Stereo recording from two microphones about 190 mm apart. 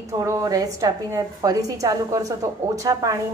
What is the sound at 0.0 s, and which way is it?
A woman's voice, 15° right (ahead or behind).